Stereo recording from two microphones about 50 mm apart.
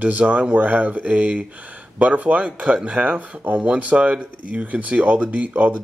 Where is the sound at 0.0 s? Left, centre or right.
Right.